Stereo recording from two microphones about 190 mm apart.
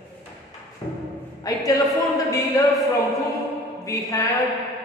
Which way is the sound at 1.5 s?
20° left (ahead or behind).